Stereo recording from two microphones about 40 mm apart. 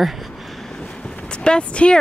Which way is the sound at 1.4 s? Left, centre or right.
Left.